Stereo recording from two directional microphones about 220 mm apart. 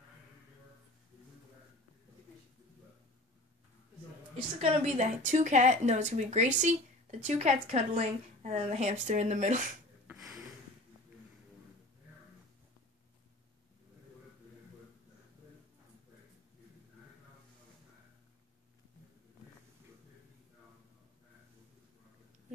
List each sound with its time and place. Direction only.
4.6 s speech: 30° right (ahead or behind)